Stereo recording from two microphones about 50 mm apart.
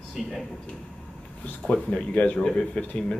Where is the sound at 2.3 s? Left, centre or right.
Centre.